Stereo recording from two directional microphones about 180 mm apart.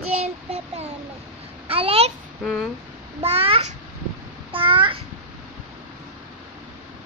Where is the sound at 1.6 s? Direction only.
30° right (ahead or behind).